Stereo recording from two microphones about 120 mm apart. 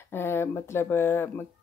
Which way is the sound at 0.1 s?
20° left (ahead or behind).